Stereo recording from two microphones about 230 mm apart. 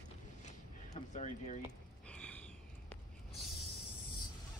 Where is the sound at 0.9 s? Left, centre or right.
Left.